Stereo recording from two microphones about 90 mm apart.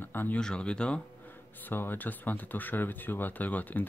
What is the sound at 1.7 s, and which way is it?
Speech, 20° left (ahead or behind).